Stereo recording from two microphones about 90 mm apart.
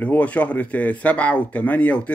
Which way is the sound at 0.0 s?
15° left (ahead or behind).